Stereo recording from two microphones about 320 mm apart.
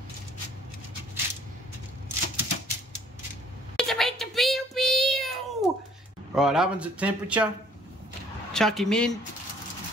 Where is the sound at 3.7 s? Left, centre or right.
Centre.